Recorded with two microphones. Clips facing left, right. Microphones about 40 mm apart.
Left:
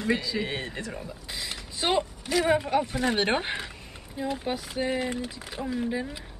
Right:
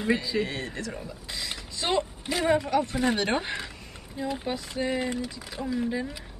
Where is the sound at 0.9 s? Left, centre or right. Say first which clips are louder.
Even; centre.